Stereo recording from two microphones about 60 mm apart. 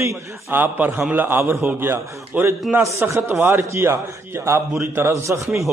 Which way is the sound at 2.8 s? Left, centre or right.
Right.